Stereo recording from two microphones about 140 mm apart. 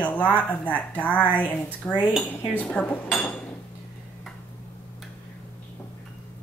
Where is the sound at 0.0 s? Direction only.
10° left (ahead or behind).